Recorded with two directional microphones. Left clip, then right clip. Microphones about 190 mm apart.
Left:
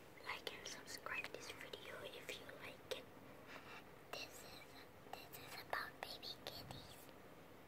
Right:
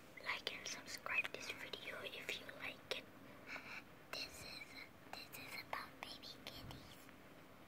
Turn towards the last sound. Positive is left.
turn(degrees=20)  # may be behind; listen again after turning